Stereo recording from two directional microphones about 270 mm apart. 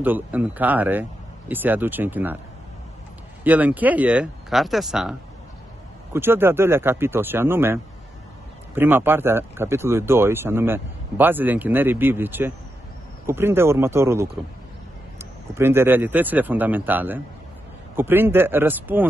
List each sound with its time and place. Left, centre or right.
0.0 s speech: centre
3.4 s speech: centre
6.1 s speech: centre